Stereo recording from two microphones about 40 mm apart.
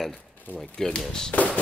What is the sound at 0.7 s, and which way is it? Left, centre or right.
Speech, left.